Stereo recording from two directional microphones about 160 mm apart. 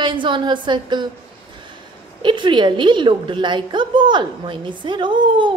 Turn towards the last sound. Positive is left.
turn(degrees=-30)  # may be behind; listen again after turning